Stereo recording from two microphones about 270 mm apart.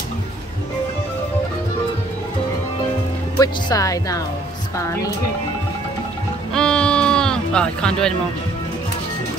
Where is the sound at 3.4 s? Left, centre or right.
Centre.